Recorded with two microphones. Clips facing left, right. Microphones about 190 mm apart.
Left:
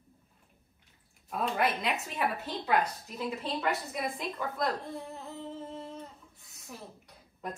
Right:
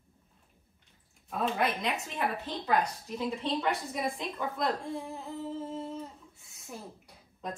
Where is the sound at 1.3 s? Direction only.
Centre (ahead or behind).